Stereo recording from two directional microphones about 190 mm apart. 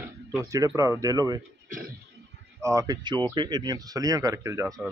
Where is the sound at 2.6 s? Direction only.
15° right (ahead or behind).